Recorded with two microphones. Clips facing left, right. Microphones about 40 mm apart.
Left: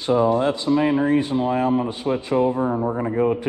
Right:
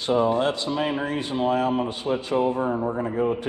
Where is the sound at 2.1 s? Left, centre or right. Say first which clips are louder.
Left 2 dB; left.